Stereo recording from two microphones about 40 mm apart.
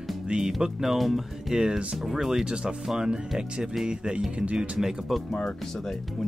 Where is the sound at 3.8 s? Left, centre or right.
Right.